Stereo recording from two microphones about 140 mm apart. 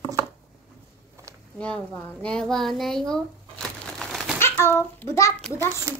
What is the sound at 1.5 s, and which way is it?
A woman's voice, 5° left (ahead or behind).